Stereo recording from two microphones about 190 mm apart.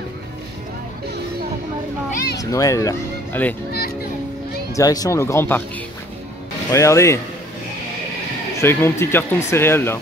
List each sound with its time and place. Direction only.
2.3 s speech: 20° left (ahead or behind)
4.7 s speech: 20° left (ahead or behind)
6.7 s speech: 15° left (ahead or behind)
8.5 s speech: 15° left (ahead or behind)